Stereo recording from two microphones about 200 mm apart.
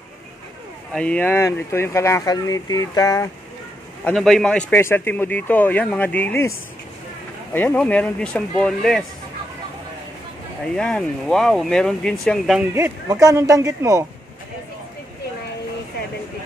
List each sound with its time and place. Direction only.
0.9 s speech: 5° left (ahead or behind)
4.0 s speech: centre (ahead or behind)
7.5 s speech: 5° left (ahead or behind)
10.8 s speech: 5° left (ahead or behind)
12.7 s speech: 15° right (ahead or behind)